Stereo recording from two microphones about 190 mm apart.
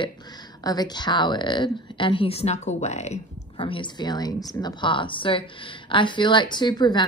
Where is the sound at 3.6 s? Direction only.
25° left (ahead or behind).